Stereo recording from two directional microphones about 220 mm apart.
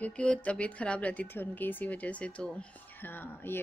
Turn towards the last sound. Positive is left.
turn(degrees=10)  # may be behind; listen again after turning